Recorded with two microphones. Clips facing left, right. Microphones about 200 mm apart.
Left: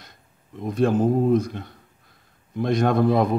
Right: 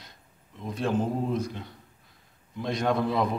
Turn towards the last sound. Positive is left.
turn(degrees=50)  # may be behind; listen again after turning